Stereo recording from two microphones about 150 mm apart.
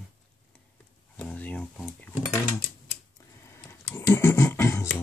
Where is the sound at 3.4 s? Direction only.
15° left (ahead or behind).